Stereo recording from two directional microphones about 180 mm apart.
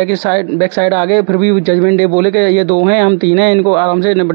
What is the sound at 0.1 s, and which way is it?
Speech, 20° right (ahead or behind).